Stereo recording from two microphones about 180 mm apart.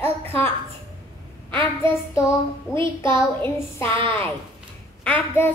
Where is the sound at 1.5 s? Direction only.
15° left (ahead or behind).